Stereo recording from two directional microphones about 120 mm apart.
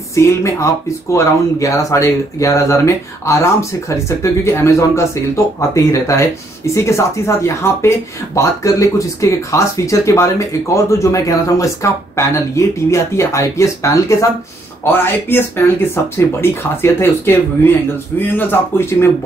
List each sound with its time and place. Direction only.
0.1 s speech: 25° left (ahead or behind)